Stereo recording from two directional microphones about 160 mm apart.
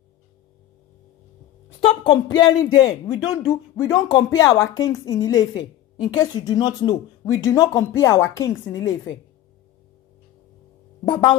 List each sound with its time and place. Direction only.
1.8 s speech: 35° left (ahead or behind)
11.1 s speech: 30° left (ahead or behind)